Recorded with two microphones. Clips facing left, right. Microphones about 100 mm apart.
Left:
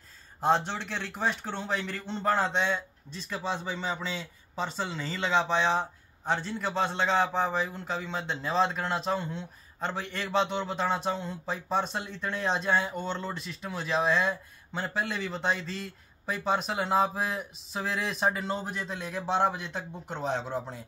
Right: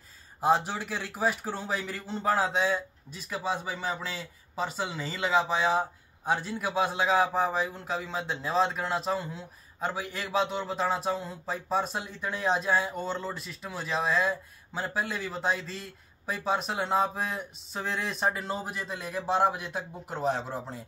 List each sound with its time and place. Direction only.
0.4 s a man's voice: 5° right (ahead or behind)